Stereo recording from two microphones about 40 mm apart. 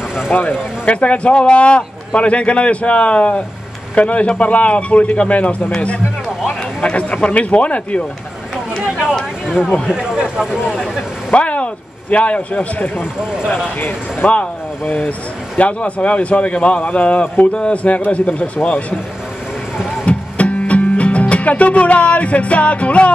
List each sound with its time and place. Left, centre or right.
0.3 s speech: left
0.8 s speech: left
6.8 s speech: left
10.1 s speech: right
10.8 s speech: centre
11.3 s a man's voice: left
14.2 s speech: left
17.6 s a man's voice: left
17.9 s speech: left
20.1 s music: left